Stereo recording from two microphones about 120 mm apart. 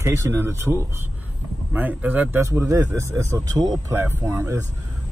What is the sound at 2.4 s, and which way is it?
Speech, 25° right (ahead or behind).